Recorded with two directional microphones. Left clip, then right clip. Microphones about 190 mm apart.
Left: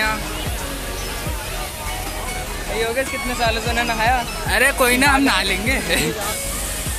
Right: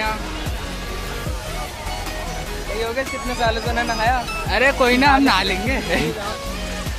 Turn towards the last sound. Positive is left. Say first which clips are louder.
# left 1 dB
turn(degrees=-10)  # may be behind; listen again after turning